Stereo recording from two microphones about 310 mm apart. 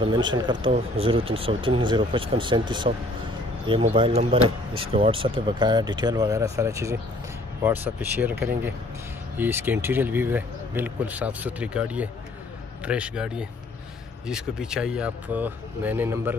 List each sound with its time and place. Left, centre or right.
0.0 s speech: centre
9.4 s speech: centre